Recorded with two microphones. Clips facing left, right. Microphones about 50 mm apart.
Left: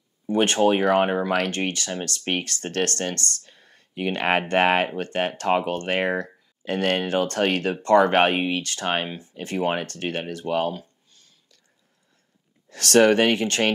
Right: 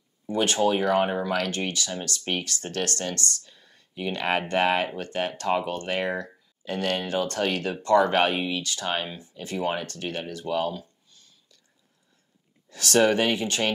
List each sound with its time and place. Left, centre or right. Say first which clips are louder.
0.3 s speech: left 4 dB; left
12.6 s speech: left 4 dB; left